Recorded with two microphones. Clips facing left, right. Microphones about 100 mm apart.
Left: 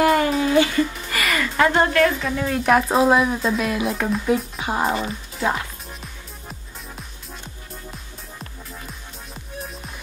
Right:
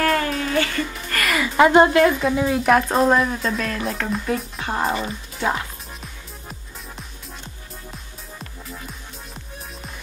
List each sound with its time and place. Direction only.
0.0 s music: 15° left (ahead or behind); by 1.5 s centre (ahead or behind)
1.6 s speech: 15° right (ahead or behind); by 5.6 s centre (ahead or behind)